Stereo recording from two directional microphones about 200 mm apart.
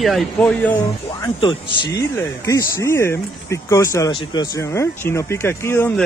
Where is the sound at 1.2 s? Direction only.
20° left (ahead or behind).